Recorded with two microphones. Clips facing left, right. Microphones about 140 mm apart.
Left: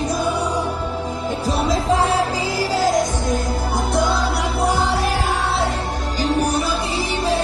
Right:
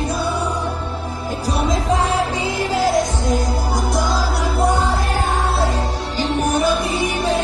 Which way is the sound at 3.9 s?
60° left (ahead or behind).